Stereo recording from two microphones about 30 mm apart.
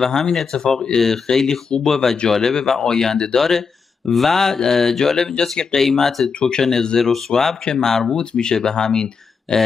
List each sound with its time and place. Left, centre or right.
0.0 s speech: centre
4.1 s mantra: centre
4.4 s speech: centre
5.8 s speech: centre
8.2 s speech: left